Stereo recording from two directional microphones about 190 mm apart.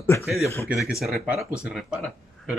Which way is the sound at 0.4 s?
15° left (ahead or behind).